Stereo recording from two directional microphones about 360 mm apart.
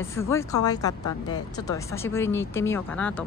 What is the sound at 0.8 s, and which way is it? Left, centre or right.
Speech, left.